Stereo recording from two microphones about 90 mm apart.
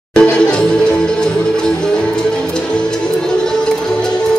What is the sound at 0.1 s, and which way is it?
Music, 10° left (ahead or behind).